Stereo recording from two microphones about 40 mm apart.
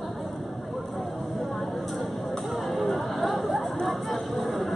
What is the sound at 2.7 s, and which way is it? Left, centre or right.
Music, centre.